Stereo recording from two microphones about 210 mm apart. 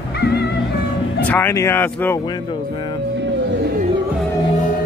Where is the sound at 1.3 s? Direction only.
10° left (ahead or behind).